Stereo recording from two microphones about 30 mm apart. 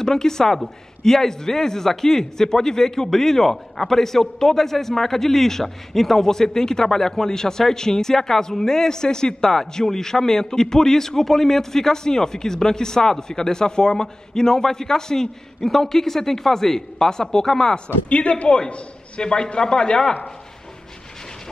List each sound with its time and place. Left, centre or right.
0.0 s speech: centre
9.5 s speech: centre
18.1 s a man's voice: left
19.2 s speech: left